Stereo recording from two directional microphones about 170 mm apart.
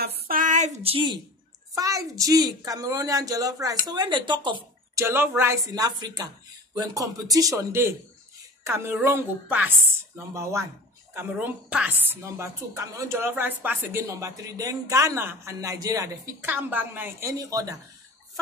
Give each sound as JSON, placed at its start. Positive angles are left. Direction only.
{"t": 0.0, "sound": "a sound", "side_deg": -65}
{"t": 0.9, "sound": "a child's voice", "side_deg": -25}
{"t": 4.9, "sound": "a woman's voice", "side_deg": -15}
{"t": 11.7, "sound": "a woman's voice", "side_deg": -10}